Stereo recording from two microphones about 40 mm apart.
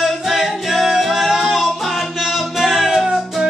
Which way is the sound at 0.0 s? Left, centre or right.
Centre.